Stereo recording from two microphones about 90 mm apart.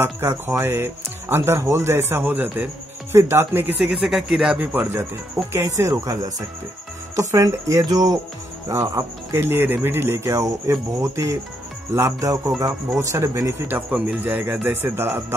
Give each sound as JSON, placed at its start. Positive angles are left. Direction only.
{"t": 0.0, "sound": "speech", "side_deg": -30}
{"t": 4.6, "sound": "speech", "side_deg": -20}
{"t": 5.5, "sound": "speech", "side_deg": -35}
{"t": 8.6, "sound": "speech", "side_deg": -35}